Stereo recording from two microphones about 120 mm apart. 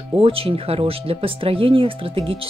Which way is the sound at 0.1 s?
50° right (ahead or behind).